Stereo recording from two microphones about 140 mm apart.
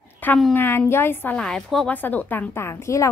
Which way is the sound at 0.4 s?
10° left (ahead or behind).